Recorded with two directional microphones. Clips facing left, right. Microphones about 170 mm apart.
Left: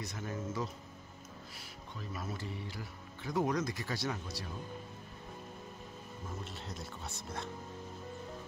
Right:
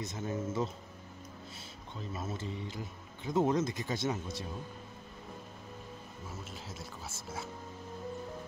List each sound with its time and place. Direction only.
0.0 s speech: 25° right (ahead or behind)
6.4 s speech: centre (ahead or behind)